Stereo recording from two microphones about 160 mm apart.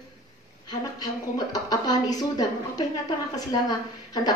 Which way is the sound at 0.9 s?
25° left (ahead or behind).